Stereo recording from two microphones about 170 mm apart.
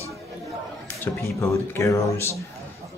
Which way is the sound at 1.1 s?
15° left (ahead or behind).